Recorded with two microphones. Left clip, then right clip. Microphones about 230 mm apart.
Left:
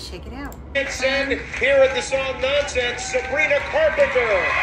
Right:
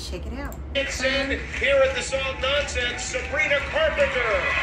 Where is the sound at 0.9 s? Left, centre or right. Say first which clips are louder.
Left 3 dB; left.